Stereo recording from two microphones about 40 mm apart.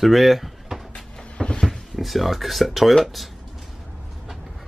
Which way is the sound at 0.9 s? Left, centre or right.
Left.